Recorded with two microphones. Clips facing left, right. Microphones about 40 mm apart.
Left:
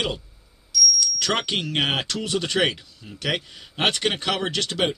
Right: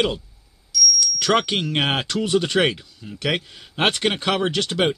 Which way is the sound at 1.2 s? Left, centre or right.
Centre.